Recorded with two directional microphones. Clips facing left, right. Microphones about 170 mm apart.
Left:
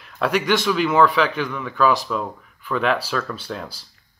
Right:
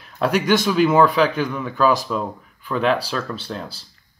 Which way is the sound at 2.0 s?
Centre (ahead or behind).